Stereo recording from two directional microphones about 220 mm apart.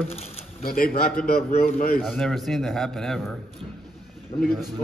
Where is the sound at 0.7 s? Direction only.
40° left (ahead or behind).